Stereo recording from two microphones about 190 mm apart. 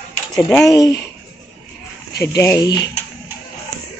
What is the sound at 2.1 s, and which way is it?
Speech, 60° left (ahead or behind).